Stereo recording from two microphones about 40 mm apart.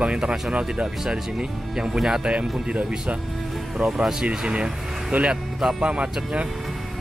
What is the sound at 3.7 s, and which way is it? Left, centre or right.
Speech, right.